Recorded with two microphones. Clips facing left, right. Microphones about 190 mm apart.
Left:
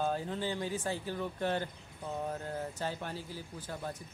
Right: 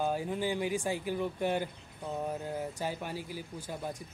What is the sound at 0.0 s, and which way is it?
Speech, 10° right (ahead or behind).